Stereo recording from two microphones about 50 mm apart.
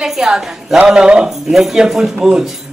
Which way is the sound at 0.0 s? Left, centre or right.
Centre.